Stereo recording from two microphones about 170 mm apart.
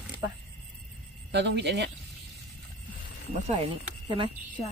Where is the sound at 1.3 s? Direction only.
90° right.